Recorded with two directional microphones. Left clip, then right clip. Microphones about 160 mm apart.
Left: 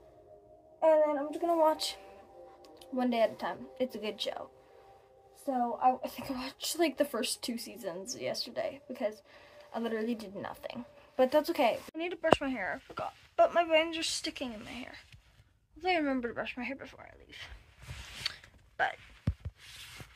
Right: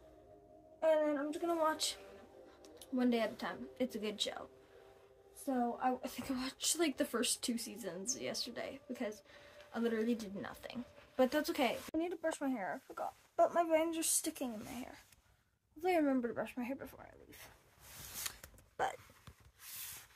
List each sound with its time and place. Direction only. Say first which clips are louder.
0.7 s speech: left 7 dB; 20° left (ahead or behind)
2.6 s speech: left 3 dB; 5° right (ahead or behind)
5.4 s speech: left 7 dB; 10° right (ahead or behind)
12.0 s speech: left 11 dB; 10° left (ahead or behind); by 14.5 s 5° right (ahead or behind)
14.5 s speech: left 3 dB; 10° left (ahead or behind)
16.0 s speech: left 2 dB; 10° right (ahead or behind)